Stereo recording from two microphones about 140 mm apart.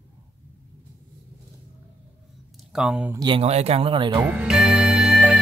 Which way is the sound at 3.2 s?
40° right (ahead or behind).